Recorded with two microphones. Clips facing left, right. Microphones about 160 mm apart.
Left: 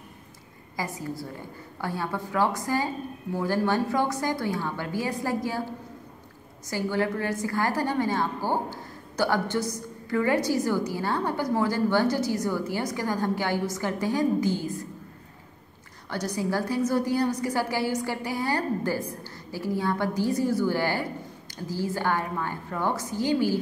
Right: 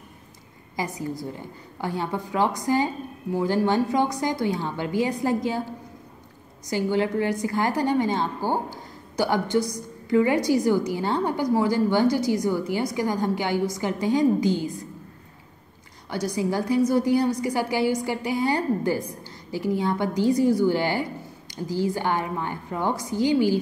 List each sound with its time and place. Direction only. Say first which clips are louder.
0.7 s a woman's voice: right 3 dB; 20° right (ahead or behind)
6.7 s a woman's voice: right 3 dB; 20° right (ahead or behind)
16.1 s a woman's voice: right 3 dB; 10° right (ahead or behind)